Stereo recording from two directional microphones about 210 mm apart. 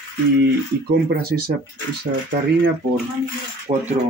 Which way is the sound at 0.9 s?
45° right (ahead or behind).